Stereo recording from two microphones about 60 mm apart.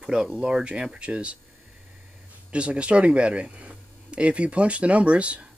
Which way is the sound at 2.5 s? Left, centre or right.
Centre.